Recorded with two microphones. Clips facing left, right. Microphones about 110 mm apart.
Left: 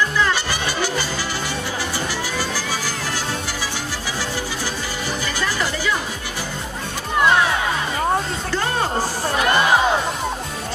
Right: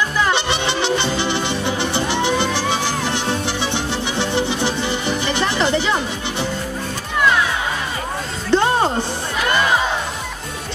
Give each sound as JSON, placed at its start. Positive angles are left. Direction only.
{"t": 0.2, "sound": "music", "side_deg": -25}
{"t": 8.5, "sound": "music", "side_deg": -25}